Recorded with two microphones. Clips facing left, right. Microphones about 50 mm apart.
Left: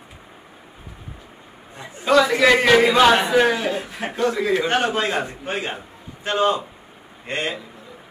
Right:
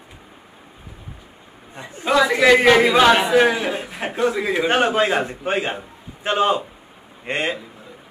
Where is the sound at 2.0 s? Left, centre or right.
Centre.